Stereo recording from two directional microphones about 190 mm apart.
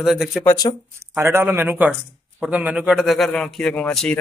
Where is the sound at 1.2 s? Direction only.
15° right (ahead or behind).